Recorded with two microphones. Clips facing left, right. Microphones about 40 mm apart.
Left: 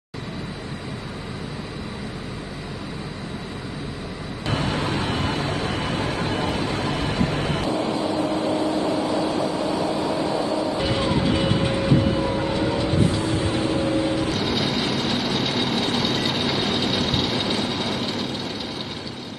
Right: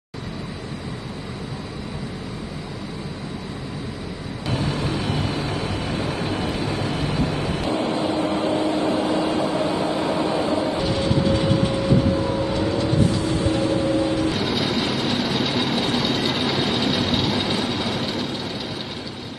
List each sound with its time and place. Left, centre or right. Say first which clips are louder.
4.5 s vehicle: left 1 dB; left
5.9 s vehicle: even; left
6.8 s vehicle: even; centre
7.3 s a sound: left 1 dB; left
7.7 s vehicle: right 3 dB; right
9.6 s train: right 1 dB; right
10.8 s music: right 1 dB; centre
11.2 s vehicle: right 1 dB; left
13.2 s vehicle: right 2 dB; left
14.3 s train: right 1 dB; centre